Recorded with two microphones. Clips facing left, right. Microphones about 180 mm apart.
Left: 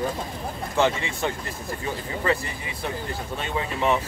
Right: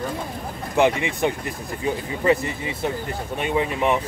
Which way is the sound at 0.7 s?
15° right (ahead or behind).